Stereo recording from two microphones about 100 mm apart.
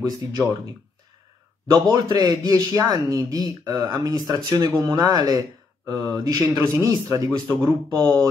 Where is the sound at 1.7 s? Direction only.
40° right (ahead or behind).